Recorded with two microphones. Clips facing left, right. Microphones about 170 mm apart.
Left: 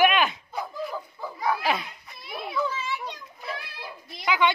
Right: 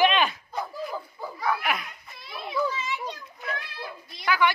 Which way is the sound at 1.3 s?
30° left (ahead or behind).